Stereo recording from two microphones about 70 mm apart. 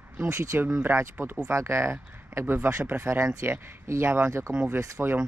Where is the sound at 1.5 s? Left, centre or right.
Right.